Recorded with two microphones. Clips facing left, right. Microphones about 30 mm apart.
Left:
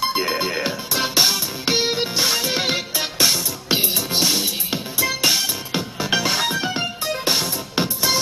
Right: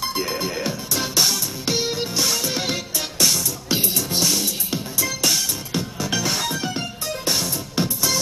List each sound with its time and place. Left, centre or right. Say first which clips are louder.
0.0 s music: left 4 dB; left